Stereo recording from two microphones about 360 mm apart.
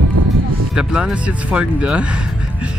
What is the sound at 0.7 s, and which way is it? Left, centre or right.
Speech, centre.